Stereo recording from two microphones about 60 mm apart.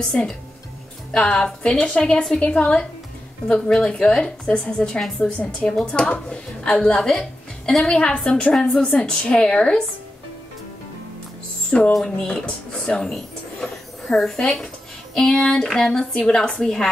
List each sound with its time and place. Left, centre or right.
0.0 s a woman's voice: centre
11.9 s a woman's voice: centre